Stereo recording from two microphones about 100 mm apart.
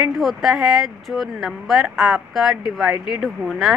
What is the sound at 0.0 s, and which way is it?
A woman's voice, centre (ahead or behind).